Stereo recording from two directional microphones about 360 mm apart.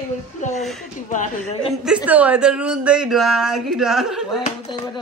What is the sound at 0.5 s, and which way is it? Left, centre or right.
Speech, centre.